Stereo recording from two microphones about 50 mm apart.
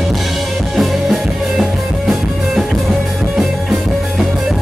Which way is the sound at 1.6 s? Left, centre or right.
Centre.